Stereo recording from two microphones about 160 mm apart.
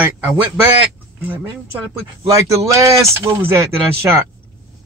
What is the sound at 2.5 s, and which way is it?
Speech, 20° right (ahead or behind).